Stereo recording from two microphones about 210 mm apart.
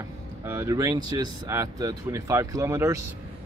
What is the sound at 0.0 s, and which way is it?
Speech, 15° right (ahead or behind).